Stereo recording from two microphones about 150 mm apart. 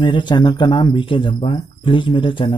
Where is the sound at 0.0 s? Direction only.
30° left (ahead or behind).